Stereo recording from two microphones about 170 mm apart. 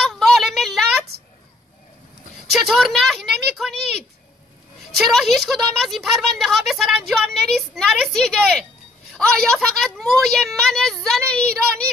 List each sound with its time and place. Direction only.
0.0 s a sound: centre (ahead or behind)
2.5 s speech: centre (ahead or behind)
4.9 s a woman's voice: centre (ahead or behind)